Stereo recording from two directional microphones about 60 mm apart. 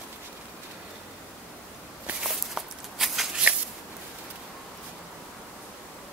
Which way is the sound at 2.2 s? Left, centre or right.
Centre.